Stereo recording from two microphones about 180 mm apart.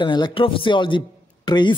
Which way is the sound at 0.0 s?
25° left (ahead or behind).